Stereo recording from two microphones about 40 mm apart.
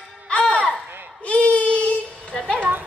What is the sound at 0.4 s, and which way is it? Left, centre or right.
Music, centre.